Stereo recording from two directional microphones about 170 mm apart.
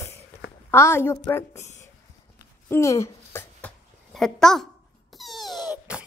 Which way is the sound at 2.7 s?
15° left (ahead or behind).